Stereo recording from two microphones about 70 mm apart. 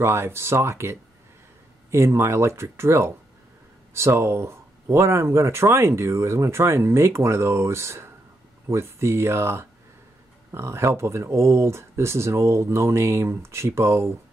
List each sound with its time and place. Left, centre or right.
0.0 s speech: right